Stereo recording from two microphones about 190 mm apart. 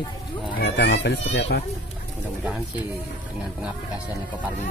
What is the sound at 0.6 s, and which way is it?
Speech, 60° left (ahead or behind).